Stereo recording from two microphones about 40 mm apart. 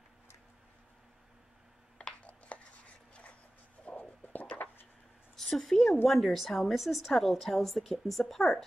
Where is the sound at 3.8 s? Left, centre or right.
Left.